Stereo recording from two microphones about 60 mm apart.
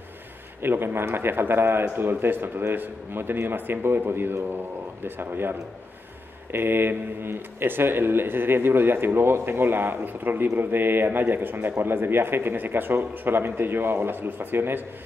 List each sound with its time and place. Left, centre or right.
0.6 s a man's voice: right